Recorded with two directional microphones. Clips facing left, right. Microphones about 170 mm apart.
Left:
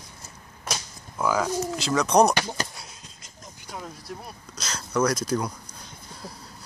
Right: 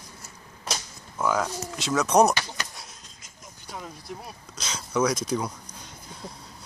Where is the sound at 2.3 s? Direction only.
40° left (ahead or behind).